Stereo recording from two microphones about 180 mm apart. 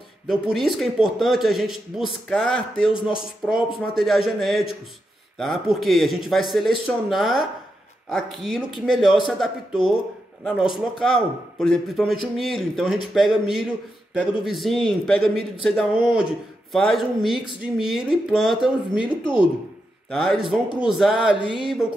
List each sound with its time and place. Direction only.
0.3 s a man's voice: centre (ahead or behind)
3.9 s a man's voice: centre (ahead or behind)
19.2 s speech: 30° left (ahead or behind)
20.1 s a man's voice: centre (ahead or behind)